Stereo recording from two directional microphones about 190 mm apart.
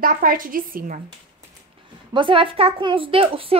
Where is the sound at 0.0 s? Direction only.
45° right (ahead or behind).